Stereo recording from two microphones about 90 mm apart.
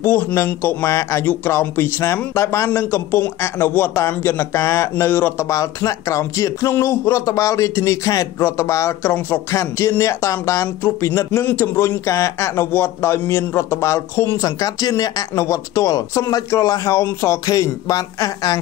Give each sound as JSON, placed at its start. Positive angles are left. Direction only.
{"t": 0.0, "sound": "a man's voice", "side_deg": 30}
{"t": 0.8, "sound": "a man's voice", "side_deg": 35}
{"t": 5.5, "sound": "speech", "side_deg": 35}